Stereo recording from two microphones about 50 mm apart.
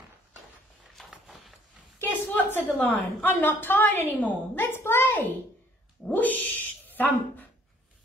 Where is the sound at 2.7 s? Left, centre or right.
Left.